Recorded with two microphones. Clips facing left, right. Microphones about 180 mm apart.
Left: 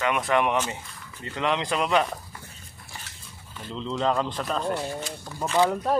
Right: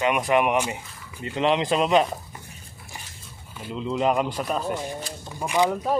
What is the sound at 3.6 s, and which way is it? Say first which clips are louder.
Speech: right 3 dB; 10° right (ahead or behind).